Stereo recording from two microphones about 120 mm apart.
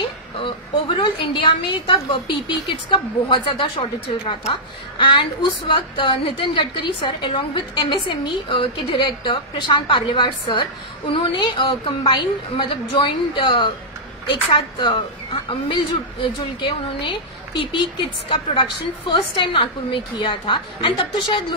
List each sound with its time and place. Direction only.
0.0 s a woman's voice: 45° left (ahead or behind)
18.3 s a woman's voice: 45° left (ahead or behind)